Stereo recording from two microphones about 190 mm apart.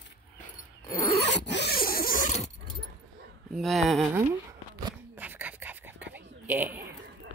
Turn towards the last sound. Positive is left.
turn(degrees=-10)  # may be behind; listen again after turning